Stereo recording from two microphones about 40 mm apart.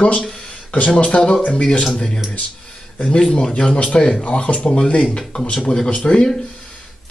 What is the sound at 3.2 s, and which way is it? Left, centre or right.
Speech, centre.